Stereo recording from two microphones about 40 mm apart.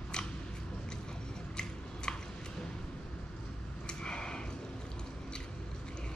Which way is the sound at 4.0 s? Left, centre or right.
Left.